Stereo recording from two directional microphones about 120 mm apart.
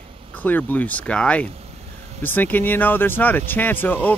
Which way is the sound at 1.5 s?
60° right (ahead or behind).